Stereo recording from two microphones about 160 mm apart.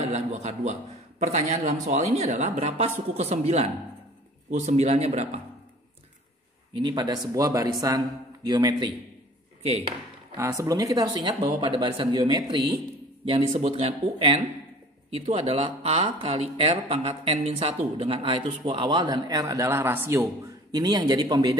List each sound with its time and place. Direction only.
0.0 s speech: 45° right (ahead or behind)
6.8 s speech: 25° right (ahead or behind)
9.7 s speech: 40° right (ahead or behind)
10.3 s speech: 20° right (ahead or behind)